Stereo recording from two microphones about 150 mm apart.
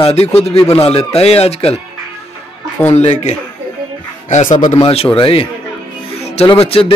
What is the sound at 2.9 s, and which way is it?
Speech, 45° left (ahead or behind).